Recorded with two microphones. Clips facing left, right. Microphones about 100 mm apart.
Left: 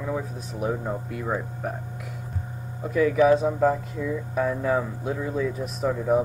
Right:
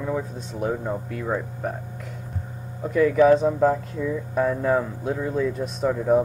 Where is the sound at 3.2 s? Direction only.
5° left (ahead or behind).